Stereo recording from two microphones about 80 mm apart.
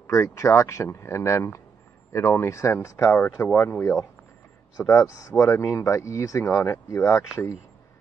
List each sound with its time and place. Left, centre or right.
0.0 s speech: left
3.5 s speech: left
4.7 s speech: left